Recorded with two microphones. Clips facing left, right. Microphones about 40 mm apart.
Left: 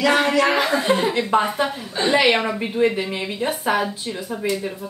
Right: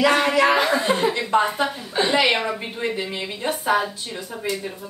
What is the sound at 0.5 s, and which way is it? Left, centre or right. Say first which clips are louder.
Speech: even; centre.